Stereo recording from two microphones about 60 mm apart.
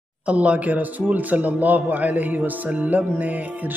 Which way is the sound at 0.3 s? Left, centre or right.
Right.